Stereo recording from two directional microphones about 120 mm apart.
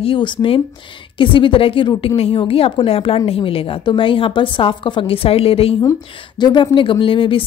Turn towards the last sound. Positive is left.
turn(degrees=45)  # may be behind; listen again after turning